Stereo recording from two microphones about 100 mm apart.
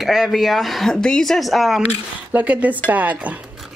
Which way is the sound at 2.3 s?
15° right (ahead or behind).